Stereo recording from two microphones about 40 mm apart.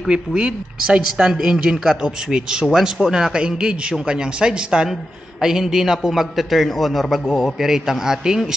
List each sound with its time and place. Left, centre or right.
0.1 s a man's voice: right; by 7.2 s centre
7.6 s a man's voice: centre